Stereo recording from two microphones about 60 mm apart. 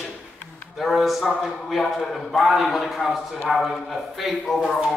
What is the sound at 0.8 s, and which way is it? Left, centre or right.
Speech, centre.